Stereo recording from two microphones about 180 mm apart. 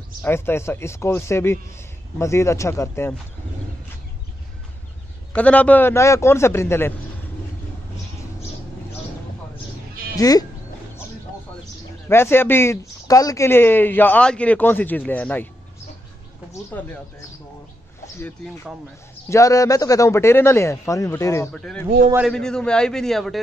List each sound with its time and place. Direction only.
0.2 s speech: 15° left (ahead or behind)
5.3 s speech: 5° left (ahead or behind)
10.1 s speech: 20° left (ahead or behind)
12.1 s speech: 15° left (ahead or behind)
16.7 s speech: 10° left (ahead or behind)
18.0 s speech: 10° left (ahead or behind)
21.5 s a man's voice: 5° left (ahead or behind)